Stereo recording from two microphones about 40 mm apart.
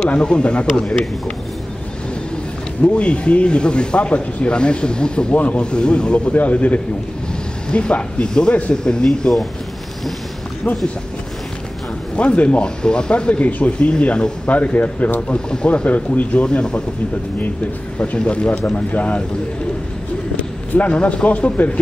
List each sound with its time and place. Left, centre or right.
0.1 s speech: left
2.8 s speech: left
5.3 s speech: left
5.6 s speech: left
6.3 s speech: left
7.7 s speech: left
12.2 s speech: left
15.3 s speech: left
17.9 s speech: left
18.9 s speech: left
20.3 s speech: left